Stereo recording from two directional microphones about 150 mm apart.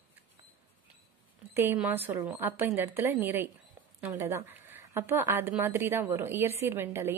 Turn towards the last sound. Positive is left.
turn(degrees=-15)  # may be behind; listen again after turning